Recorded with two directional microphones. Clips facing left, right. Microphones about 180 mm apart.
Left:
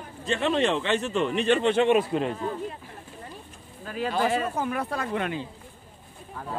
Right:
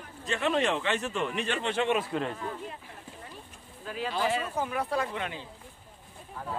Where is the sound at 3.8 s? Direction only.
45° left (ahead or behind).